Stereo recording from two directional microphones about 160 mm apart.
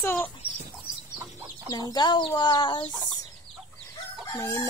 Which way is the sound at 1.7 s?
25° left (ahead or behind).